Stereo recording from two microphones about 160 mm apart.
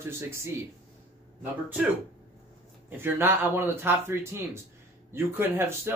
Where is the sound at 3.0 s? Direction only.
15° right (ahead or behind).